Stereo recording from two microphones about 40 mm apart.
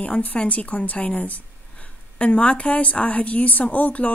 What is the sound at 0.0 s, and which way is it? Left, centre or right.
Speech, left.